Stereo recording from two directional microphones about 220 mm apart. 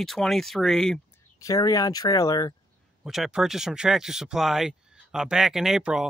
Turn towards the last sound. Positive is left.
turn(degrees=0)  # may be behind; listen again after turning